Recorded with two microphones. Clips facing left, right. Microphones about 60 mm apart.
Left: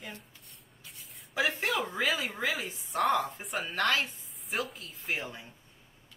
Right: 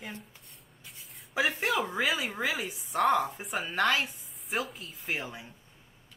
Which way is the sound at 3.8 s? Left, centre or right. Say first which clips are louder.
Right 2 dB; centre.